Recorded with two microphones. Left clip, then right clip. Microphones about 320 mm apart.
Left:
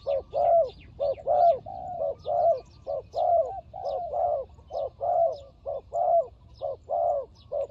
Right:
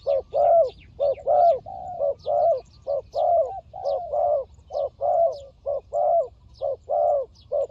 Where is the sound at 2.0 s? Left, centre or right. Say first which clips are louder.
Right 4 dB; centre.